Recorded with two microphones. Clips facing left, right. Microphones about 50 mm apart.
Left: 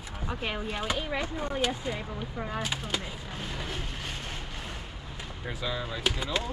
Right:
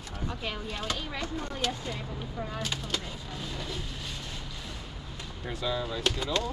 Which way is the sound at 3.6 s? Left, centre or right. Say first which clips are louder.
Left 1 dB; left.